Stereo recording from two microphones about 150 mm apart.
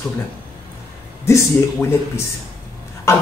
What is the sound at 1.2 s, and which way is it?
Speech, 15° left (ahead or behind).